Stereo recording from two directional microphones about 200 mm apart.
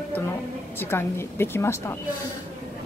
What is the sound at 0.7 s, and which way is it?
Speech, 10° left (ahead or behind).